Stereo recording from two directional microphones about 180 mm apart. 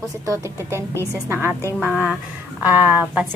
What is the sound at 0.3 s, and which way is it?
A woman's voice, 15° right (ahead or behind).